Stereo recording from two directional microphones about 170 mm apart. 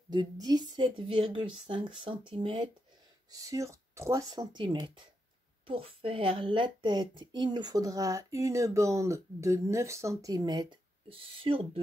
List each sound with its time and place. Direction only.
0.1 s a woman's voice: 25° right (ahead or behind)